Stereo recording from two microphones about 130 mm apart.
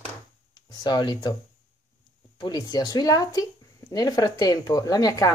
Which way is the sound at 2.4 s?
30° left (ahead or behind).